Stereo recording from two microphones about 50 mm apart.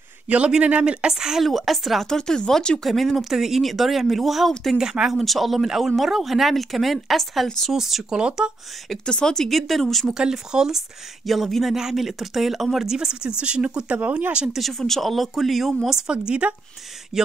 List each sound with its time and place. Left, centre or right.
0.3 s speech: right
1.1 s speech: centre
2.0 s speech: centre
2.8 s speech: centre
4.7 s speech: centre
5.1 s speech: centre
7.7 s speech: centre
9.0 s speech: centre
9.5 s speech: centre
10.1 s speech: centre
11.2 s speech: centre; by 14.2 s right
14.5 s speech: centre; by 16.5 s right